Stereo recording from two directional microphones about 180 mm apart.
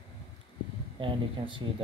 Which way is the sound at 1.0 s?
25° right (ahead or behind).